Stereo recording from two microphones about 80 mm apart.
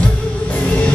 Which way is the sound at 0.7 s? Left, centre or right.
Centre.